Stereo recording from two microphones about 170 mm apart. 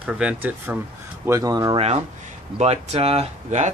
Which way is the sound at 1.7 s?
35° right (ahead or behind).